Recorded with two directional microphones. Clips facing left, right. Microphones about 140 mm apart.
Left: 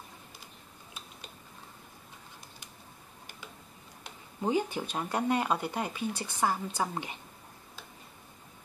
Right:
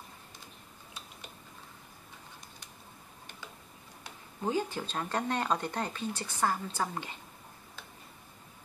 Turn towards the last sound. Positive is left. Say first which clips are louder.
# left 2 dB
turn(degrees=15)  # may be behind; listen again after turning